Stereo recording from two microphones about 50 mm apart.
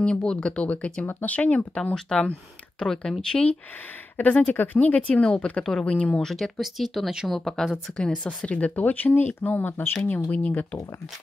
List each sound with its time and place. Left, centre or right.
0.0 s speech: centre
2.0 s speech: centre
4.2 s speech: left
5.0 s speech: left
6.1 s speech: centre
8.5 s speech: left